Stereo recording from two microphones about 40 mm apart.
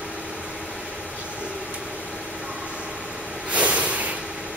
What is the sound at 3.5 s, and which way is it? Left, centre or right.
Snort, right.